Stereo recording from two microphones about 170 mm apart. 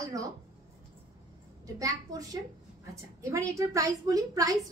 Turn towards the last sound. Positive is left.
turn(degrees=-20)  # may be behind; listen again after turning